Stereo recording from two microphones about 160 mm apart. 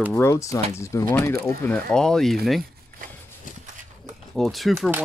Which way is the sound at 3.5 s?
55° left (ahead or behind).